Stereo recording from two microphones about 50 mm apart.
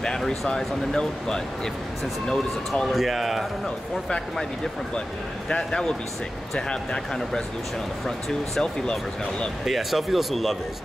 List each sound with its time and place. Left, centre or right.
0.0 s speech: centre
2.9 s speech: centre
3.6 s speech: centre
5.5 s speech: centre
8.3 s speech: centre
9.7 s speech: centre